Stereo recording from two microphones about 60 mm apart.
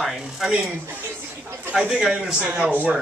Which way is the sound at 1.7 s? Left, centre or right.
Centre.